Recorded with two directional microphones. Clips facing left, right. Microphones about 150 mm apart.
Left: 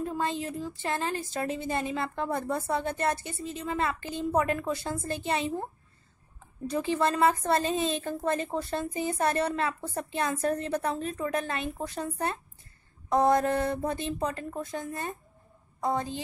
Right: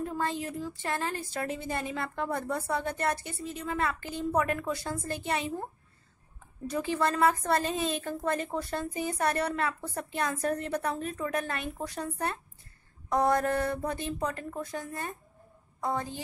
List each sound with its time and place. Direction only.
0.0 s a woman's voice: 25° left (ahead or behind)
6.7 s a woman's voice: 25° left (ahead or behind)